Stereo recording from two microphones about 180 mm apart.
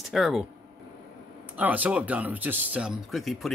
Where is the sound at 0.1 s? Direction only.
Centre (ahead or behind).